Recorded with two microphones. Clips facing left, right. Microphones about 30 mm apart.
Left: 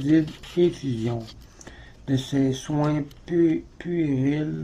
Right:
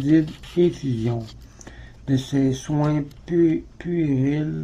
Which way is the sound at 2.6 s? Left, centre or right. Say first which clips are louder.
Right 2 dB; centre.